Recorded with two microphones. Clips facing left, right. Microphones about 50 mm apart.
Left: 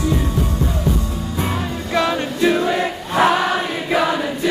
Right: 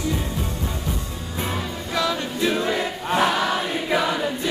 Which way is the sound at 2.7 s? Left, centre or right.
Left.